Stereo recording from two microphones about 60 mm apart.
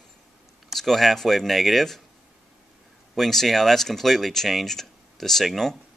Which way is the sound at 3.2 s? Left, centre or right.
Centre.